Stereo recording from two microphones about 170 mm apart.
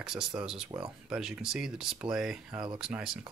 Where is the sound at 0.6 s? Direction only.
30° right (ahead or behind).